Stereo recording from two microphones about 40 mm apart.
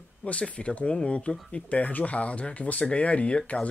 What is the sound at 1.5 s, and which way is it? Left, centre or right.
Speech, left.